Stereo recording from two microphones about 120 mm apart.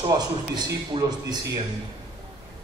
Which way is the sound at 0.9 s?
45° right (ahead or behind).